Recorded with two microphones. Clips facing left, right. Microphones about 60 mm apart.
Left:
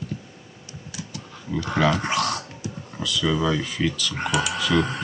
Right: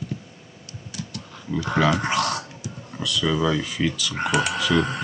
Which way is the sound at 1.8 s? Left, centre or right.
Centre.